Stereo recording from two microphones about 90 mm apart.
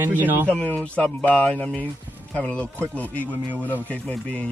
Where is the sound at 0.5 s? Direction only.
15° left (ahead or behind).